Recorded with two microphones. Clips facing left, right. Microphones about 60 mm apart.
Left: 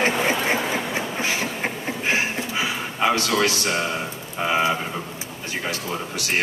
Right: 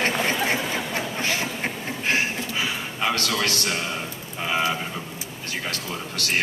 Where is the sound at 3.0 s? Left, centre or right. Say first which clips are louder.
Left 5 dB; centre.